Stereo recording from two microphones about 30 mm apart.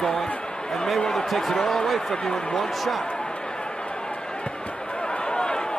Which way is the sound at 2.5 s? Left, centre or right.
Centre.